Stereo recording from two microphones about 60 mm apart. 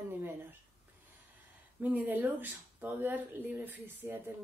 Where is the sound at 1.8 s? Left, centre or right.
Right.